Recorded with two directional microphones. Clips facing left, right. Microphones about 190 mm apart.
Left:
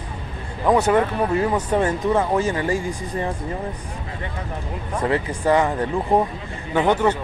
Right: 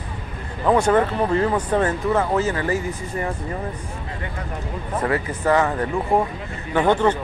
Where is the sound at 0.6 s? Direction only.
10° left (ahead or behind).